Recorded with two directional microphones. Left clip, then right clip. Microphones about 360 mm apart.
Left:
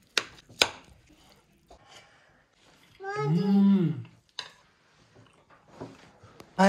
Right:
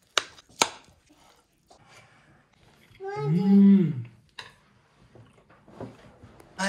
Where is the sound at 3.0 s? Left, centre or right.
Left.